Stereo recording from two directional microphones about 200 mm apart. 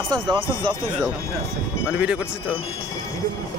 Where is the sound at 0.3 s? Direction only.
25° right (ahead or behind).